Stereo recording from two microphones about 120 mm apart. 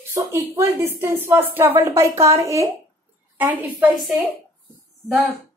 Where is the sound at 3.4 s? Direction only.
15° right (ahead or behind).